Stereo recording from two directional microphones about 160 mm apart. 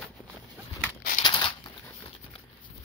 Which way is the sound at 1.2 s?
25° left (ahead or behind).